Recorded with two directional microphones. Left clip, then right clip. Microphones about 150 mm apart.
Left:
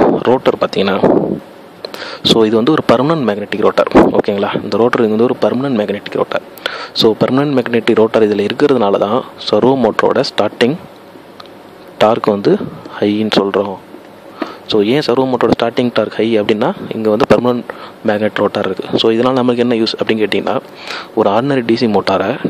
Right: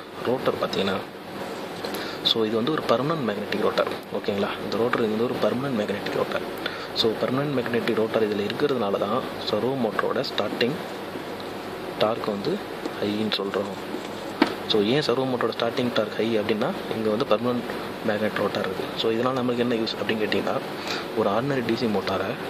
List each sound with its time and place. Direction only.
0.2 s a man's voice: 55° left (ahead or behind)
12.0 s a man's voice: 50° left (ahead or behind)
14.7 s a man's voice: 50° left (ahead or behind)